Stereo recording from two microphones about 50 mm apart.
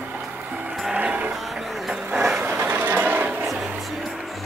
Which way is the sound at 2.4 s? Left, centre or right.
Right.